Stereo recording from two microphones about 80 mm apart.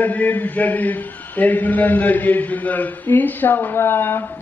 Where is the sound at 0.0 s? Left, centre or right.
Centre.